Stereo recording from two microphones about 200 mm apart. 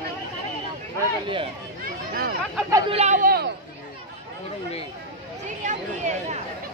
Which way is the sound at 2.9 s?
35° right (ahead or behind).